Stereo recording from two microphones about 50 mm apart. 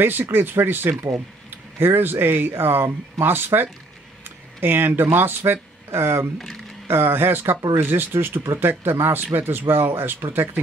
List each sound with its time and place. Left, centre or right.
0.0 s speech: right
6.3 s speech: centre
6.9 s speech: right